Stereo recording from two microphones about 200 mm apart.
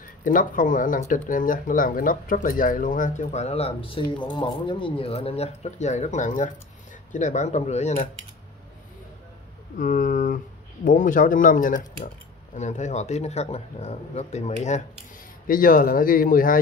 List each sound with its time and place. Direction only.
0.2 s speech: 40° left (ahead or behind)
9.8 s speech: 40° left (ahead or behind)